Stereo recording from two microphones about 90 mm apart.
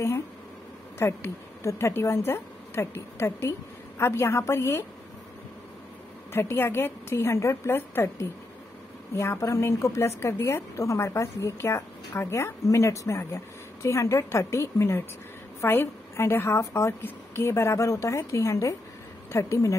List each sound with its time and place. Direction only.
0.9 s a woman's voice: 30° left (ahead or behind)
6.3 s a woman's voice: 25° left (ahead or behind)